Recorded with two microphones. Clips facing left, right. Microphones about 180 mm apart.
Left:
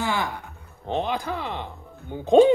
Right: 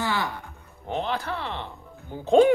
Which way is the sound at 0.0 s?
15° left (ahead or behind).